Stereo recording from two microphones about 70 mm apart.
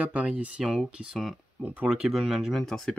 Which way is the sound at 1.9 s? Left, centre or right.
Centre.